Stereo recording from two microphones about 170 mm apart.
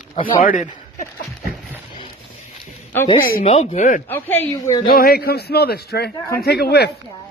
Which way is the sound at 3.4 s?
40° left (ahead or behind).